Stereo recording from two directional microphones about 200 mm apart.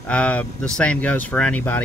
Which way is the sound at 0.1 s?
5° left (ahead or behind).